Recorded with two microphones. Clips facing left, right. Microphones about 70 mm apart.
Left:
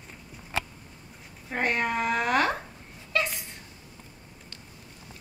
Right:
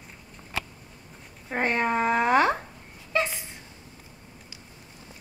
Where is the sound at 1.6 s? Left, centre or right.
Right.